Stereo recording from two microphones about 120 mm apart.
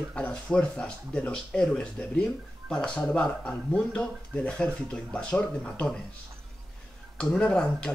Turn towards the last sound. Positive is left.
turn(degrees=5)  # may be behind; listen again after turning